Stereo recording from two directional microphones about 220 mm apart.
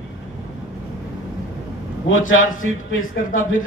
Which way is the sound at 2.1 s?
65° left (ahead or behind).